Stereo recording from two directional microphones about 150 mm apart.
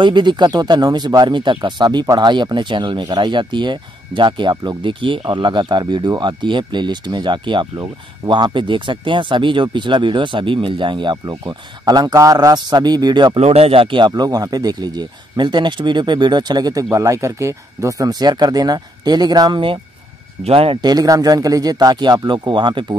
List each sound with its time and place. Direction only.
0.0 s speech: 30° right (ahead or behind)
13.4 s speech: 40° right (ahead or behind)